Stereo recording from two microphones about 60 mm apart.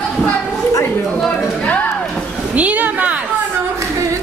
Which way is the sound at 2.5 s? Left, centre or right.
Right.